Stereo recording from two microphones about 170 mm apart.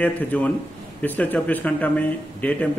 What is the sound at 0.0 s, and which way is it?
A man's voice, 10° left (ahead or behind).